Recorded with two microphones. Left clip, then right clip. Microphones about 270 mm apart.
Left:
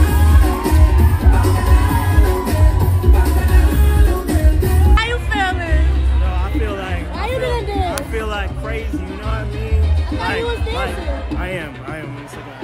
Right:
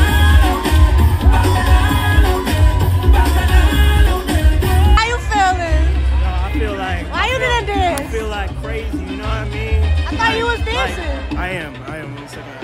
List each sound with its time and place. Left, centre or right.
0.0 s music: centre
6.6 s music: centre
7.2 s music: right
7.9 s music: centre
10.3 s a sound: right
11.3 s music: centre